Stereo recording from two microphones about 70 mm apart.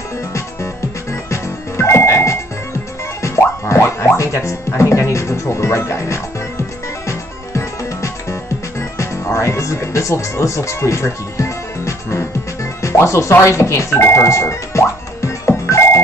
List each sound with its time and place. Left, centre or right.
1.3 s music: left
4.2 s speech: left
7.1 s music: left
12.8 s speech: left
14.1 s music: left